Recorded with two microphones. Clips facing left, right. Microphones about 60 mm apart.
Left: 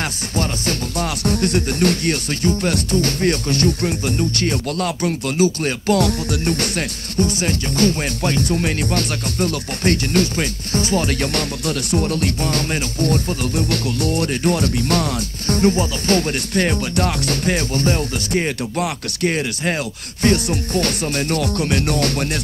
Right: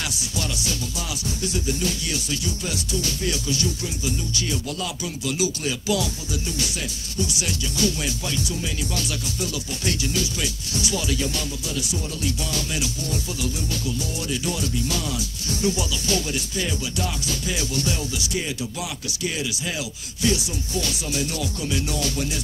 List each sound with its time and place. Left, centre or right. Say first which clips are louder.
0.3 s music: left 8 dB; left
7.2 s music: left 8 dB; left